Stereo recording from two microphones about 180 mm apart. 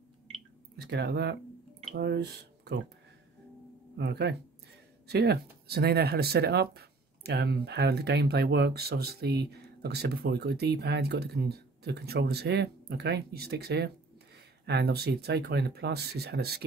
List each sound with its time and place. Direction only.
0.7 s speech: 65° right (ahead or behind)
3.9 s speech: 65° right (ahead or behind)